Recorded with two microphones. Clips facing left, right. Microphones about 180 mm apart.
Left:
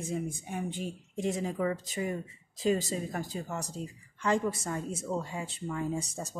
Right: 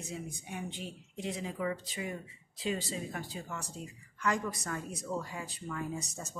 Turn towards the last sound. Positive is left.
turn(degrees=30)  # may be behind; listen again after turning